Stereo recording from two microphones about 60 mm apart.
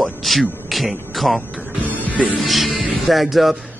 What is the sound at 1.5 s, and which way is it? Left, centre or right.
Music, right.